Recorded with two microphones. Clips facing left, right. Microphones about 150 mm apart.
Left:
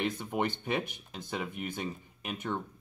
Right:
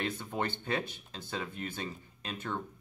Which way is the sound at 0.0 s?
15° left (ahead or behind).